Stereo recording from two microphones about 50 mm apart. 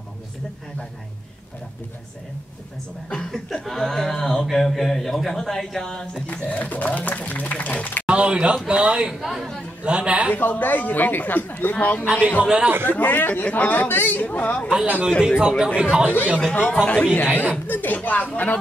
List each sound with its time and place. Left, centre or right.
3.3 s speech: centre
6.2 s speech: left
8.1 s a man's voice: right
9.2 s speech: centre
9.8 s a man's voice: right
10.3 s speech: left
11.7 s speech: left
12.4 s a man's voice: centre
12.8 s speech: left
13.7 s speech: left
15.0 s speech: centre
16.8 s speech: left
17.1 s speech: left